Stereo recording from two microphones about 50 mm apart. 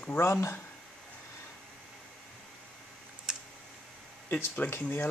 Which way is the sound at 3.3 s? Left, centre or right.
Centre.